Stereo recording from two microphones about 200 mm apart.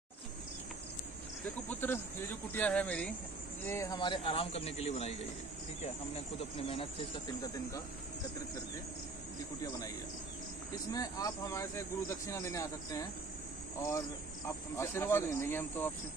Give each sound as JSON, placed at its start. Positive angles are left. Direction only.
{"t": 1.4, "sound": "speech", "side_deg": 10}
{"t": 9.6, "sound": "speech", "side_deg": 15}
{"t": 10.9, "sound": "speech", "side_deg": 15}